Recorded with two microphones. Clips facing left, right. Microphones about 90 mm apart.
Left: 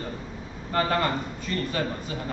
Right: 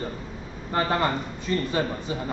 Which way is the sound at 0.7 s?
20° right (ahead or behind).